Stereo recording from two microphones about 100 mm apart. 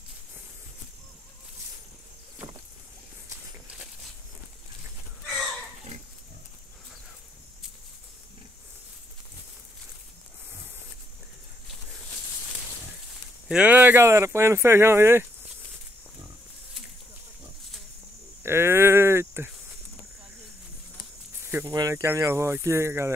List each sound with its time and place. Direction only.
13.5 s speech: 15° right (ahead or behind)
18.4 s a sound: 25° right (ahead or behind)
21.4 s snake: 20° right (ahead or behind)
21.6 s speech: 35° right (ahead or behind)